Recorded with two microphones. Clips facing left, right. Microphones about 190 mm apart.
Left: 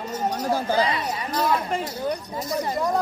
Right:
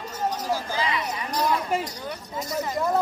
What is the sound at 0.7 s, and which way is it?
Chatter, 40° left (ahead or behind).